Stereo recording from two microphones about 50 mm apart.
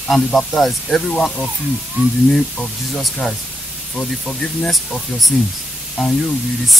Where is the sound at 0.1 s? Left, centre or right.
Centre.